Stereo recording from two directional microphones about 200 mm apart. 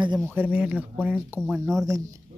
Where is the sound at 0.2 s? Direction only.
10° right (ahead or behind).